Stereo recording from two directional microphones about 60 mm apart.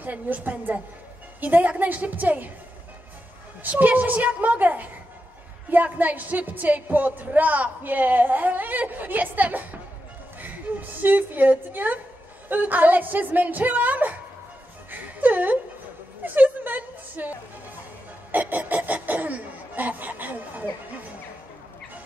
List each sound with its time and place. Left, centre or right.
0.0 s speech: right
3.8 s a woman's voice: right
14.9 s music: right
16.3 s a sound: right
18.3 s snicker: right